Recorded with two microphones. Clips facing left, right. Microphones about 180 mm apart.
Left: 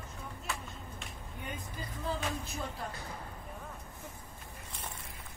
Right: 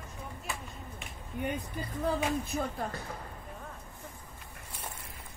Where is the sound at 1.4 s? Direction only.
55° right (ahead or behind).